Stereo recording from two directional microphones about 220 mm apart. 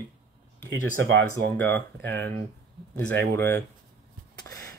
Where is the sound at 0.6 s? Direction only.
55° right (ahead or behind).